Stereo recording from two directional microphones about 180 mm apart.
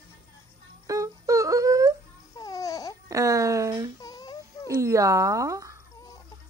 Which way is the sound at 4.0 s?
20° left (ahead or behind).